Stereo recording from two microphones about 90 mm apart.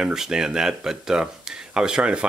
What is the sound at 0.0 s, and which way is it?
Speech, 5° right (ahead or behind).